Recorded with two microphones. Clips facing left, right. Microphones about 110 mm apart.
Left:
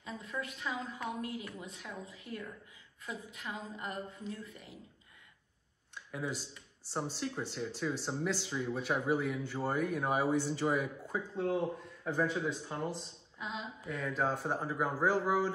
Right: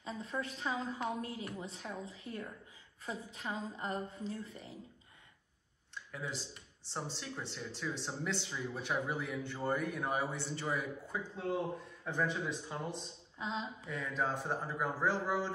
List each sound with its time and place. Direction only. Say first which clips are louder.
0.0 s a woman's voice: right 1 dB; 30° right (ahead or behind)
6.1 s speech: left 4 dB; 10° left (ahead or behind)
13.4 s speech: right 2 dB; 30° right (ahead or behind)
13.8 s speech: left 4 dB; centre (ahead or behind)